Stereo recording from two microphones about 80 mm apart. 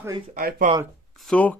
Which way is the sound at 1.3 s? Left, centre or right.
Centre.